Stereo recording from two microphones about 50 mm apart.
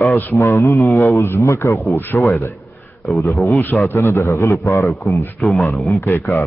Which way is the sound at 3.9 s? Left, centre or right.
Left.